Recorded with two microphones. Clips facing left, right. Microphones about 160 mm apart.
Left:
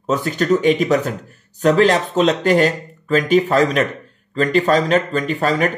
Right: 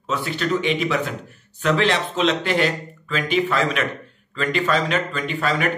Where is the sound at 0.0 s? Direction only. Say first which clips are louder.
Left 5 dB; 45° left (ahead or behind).